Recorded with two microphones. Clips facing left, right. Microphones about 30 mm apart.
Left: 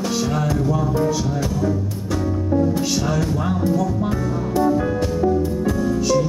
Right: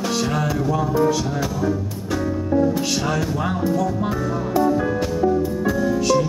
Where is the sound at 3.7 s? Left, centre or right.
Centre.